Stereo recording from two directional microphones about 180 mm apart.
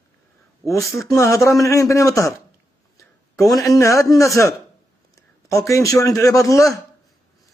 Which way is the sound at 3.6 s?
15° left (ahead or behind).